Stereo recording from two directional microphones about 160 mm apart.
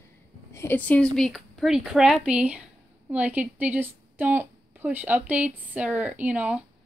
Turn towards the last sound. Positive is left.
turn(degrees=-10)  # may be behind; listen again after turning